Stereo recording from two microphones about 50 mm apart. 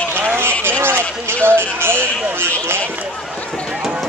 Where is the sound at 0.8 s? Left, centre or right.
Right.